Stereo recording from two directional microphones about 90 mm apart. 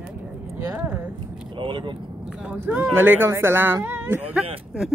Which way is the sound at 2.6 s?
25° right (ahead or behind).